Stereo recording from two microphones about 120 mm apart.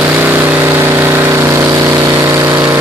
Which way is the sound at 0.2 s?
15° right (ahead or behind).